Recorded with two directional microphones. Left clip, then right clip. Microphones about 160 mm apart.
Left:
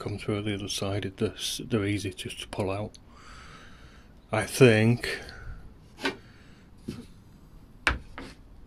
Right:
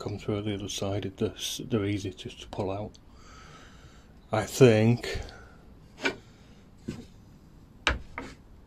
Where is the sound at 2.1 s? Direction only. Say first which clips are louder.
Left 2 dB; 15° left (ahead or behind).